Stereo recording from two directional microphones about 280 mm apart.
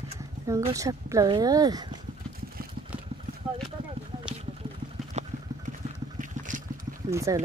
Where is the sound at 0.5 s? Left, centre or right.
Centre.